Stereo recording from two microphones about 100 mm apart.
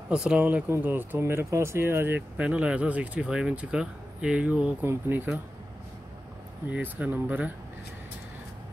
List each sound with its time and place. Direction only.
0.1 s speech: 10° right (ahead or behind)
4.8 s speech: 25° right (ahead or behind)
6.7 s speech: 15° right (ahead or behind)